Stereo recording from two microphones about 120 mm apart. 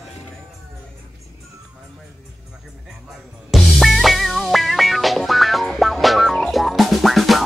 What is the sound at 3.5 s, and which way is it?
Music, centre (ahead or behind).